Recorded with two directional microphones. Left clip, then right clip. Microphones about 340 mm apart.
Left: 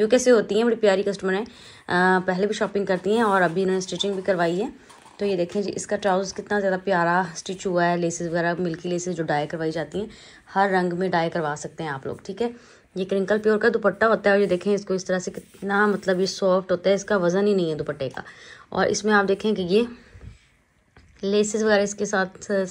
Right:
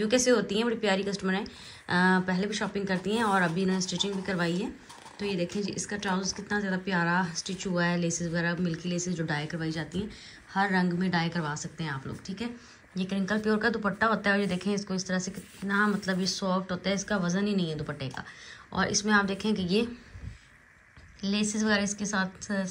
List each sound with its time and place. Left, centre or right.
0.0 s a woman's voice: centre
21.2 s a woman's voice: centre